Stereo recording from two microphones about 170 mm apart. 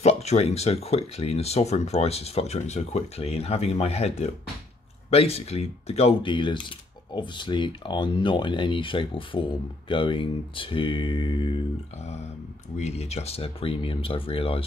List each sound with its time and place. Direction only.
0.0 s speech: 40° left (ahead or behind)
12.7 s speech: 40° left (ahead or behind)